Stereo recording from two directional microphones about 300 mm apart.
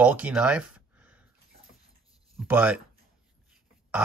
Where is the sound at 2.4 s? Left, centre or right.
Centre.